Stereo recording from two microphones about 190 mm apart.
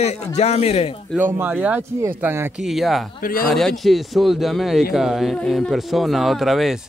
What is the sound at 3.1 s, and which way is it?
Speech, 50° left (ahead or behind).